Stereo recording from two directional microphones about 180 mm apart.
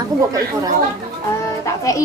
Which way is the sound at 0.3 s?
20° right (ahead or behind).